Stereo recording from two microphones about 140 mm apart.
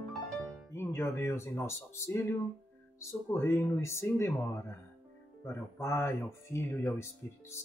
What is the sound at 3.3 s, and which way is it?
Speech, 20° left (ahead or behind).